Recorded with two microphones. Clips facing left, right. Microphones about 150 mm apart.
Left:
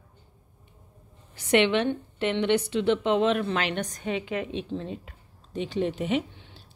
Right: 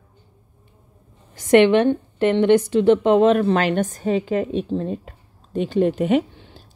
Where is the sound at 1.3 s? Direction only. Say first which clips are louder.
Right 8 dB; 45° right (ahead or behind).